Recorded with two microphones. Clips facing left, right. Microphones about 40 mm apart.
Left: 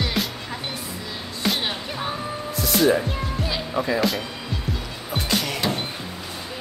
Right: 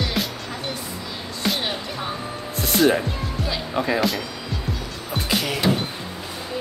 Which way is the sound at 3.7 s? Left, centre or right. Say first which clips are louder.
Right 1 dB; right.